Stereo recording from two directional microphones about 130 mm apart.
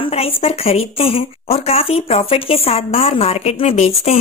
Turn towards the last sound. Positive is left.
turn(degrees=55)  # may be behind; listen again after turning